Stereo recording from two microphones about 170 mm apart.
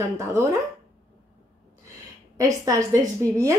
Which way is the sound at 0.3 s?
15° right (ahead or behind).